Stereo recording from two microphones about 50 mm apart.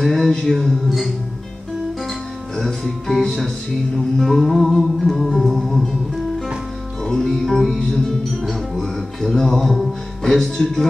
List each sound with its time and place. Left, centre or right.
0.0 s music: centre
7.0 s music: centre
7.2 s music: centre
7.8 s music: centre